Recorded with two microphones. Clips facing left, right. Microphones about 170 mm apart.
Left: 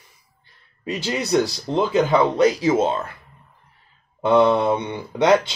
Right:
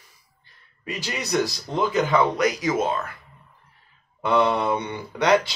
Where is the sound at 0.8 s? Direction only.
30° left (ahead or behind).